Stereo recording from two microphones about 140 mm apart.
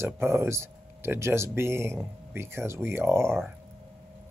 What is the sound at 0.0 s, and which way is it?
Speech, 20° right (ahead or behind).